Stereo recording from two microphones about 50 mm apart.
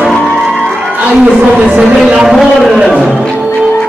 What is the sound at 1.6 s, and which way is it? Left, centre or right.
Speech, right.